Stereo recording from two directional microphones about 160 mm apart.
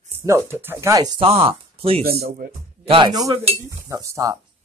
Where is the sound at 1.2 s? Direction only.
35° right (ahead or behind).